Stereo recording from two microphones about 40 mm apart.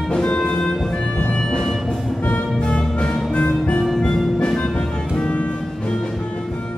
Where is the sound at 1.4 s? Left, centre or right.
Centre.